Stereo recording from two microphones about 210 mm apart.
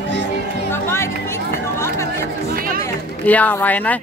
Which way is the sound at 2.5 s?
45° right (ahead or behind).